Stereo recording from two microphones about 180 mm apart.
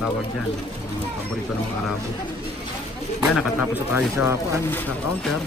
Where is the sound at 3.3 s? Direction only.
10° right (ahead or behind).